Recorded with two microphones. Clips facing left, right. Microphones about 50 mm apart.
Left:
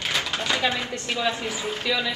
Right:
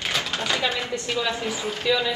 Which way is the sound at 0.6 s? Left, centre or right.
Left.